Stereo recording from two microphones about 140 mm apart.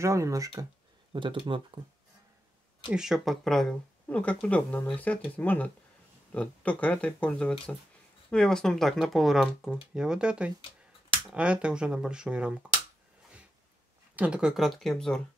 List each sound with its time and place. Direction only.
0.0 s speech: 20° right (ahead or behind)
1.1 s speech: 35° right (ahead or behind)
2.9 s speech: 5° right (ahead or behind)
14.1 s speech: 10° right (ahead or behind)